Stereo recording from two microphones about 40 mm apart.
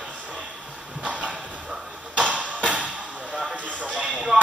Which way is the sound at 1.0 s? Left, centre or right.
Right.